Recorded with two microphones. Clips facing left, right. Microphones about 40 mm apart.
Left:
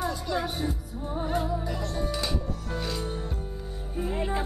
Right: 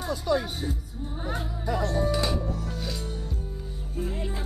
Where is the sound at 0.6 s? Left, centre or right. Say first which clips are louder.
Left 2 dB; centre.